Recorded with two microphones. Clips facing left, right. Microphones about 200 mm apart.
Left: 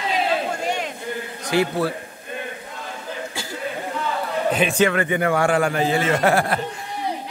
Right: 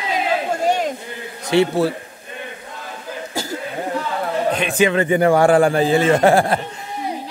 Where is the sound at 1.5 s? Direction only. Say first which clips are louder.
Right 5 dB; 25° right (ahead or behind).